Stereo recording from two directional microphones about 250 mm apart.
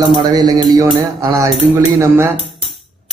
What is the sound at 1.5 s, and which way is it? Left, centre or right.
Dishes, centre.